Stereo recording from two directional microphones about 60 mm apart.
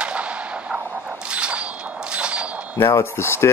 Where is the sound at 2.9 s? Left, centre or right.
Left.